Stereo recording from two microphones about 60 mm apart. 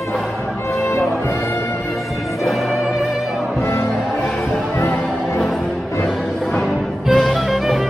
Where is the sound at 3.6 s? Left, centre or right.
Left.